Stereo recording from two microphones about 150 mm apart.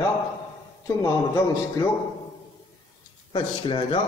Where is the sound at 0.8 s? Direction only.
20° left (ahead or behind).